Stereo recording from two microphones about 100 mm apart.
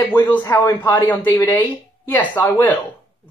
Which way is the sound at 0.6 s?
35° left (ahead or behind).